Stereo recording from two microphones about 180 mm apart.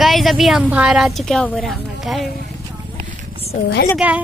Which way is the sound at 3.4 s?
35° left (ahead or behind).